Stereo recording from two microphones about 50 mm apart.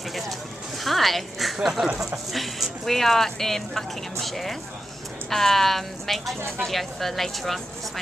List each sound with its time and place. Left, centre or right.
0.8 s speech: centre